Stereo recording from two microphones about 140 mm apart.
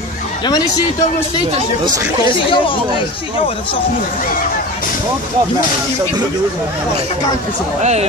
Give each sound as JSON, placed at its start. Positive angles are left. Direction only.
{"t": 2.2, "sound": "speech", "side_deg": 35}